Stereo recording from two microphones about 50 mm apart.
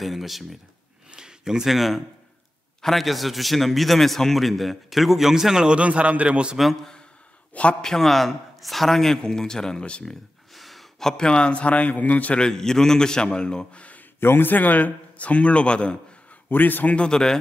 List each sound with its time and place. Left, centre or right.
0.0 s a man's voice: centre
1.1 s a sound: centre
2.8 s a man's voice: centre
5.8 s a man's voice: right
6.5 s a man's voice: centre
10.5 s a man's voice: centre; by 12.4 s left
12.4 s a man's voice: centre
14.2 s a man's voice: left; by 16.0 s centre
16.4 s a man's voice: left
16.9 s a man's voice: centre